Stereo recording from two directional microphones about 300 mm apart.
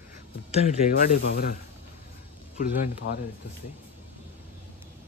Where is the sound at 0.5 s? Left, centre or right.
Left.